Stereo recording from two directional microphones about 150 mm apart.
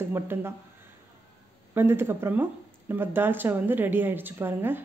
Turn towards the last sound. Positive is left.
turn(degrees=-15)  # may be behind; listen again after turning